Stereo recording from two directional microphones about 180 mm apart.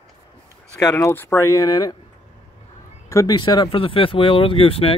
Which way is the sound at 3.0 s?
20° left (ahead or behind).